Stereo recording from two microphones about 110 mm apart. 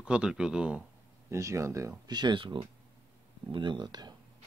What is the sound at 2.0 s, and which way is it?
Speech, 40° right (ahead or behind).